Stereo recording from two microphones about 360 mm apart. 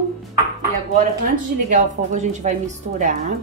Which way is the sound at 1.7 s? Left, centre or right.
Centre.